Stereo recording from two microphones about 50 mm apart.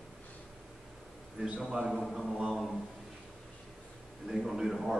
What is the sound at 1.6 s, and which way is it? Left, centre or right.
Speech, centre.